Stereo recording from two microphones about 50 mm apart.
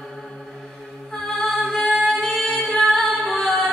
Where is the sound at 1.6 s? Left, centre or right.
Centre.